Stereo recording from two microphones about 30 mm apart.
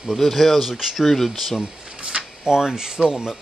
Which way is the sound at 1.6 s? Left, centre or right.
Right.